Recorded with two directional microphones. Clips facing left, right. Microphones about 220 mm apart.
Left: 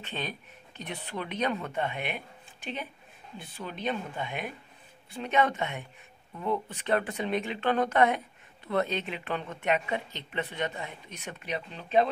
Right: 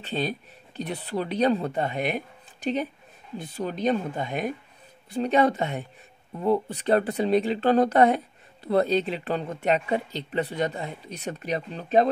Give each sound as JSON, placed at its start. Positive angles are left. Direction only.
{"t": 0.0, "sound": "speech", "side_deg": -35}